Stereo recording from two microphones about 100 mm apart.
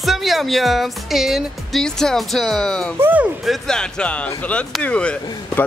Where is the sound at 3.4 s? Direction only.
5° left (ahead or behind).